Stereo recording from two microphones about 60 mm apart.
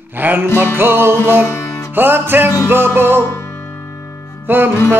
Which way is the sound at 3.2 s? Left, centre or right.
Left.